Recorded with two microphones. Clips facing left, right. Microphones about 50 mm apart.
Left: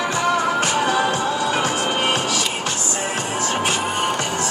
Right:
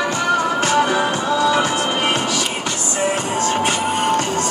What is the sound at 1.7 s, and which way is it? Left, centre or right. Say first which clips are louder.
Music: right 1 dB; right.